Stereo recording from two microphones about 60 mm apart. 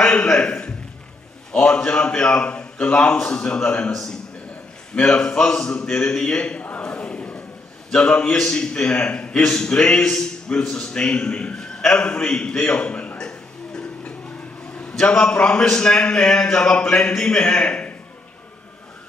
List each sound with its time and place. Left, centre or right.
0.0 s a sound: centre
1.5 s a man's voice: centre
3.9 s a man's voice: centre
5.0 s a man's voice: centre
13.2 s a sound: centre
14.8 s a man's voice: left